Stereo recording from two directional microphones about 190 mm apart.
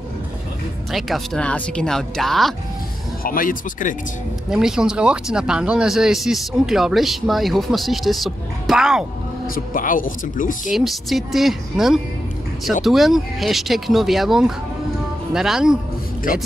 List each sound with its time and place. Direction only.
0.9 s speech: centre (ahead or behind)
3.3 s speech: 45° left (ahead or behind)
4.5 s speech: 5° right (ahead or behind)
9.8 s speech: 45° left (ahead or behind)
10.7 s speech: centre (ahead or behind)